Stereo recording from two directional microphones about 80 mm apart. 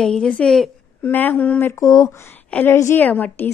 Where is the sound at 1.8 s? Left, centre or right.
Left.